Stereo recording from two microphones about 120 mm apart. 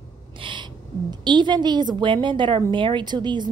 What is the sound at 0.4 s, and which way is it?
Owl, 45° right (ahead or behind).